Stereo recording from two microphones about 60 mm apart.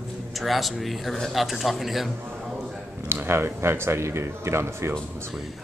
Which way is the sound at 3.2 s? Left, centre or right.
Right.